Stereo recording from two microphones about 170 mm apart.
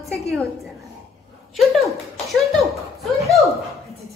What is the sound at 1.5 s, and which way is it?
Laughter, centre (ahead or behind).